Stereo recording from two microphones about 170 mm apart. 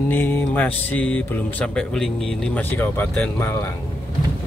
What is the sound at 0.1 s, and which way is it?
Speech, 10° left (ahead or behind).